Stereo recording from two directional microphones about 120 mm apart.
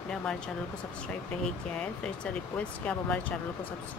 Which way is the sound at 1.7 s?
10° left (ahead or behind).